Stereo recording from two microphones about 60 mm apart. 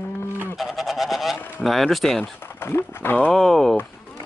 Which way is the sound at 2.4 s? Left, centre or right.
Left.